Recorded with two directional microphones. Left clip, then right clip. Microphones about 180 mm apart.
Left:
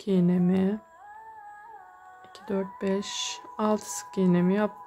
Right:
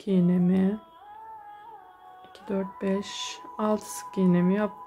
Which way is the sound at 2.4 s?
20° left (ahead or behind).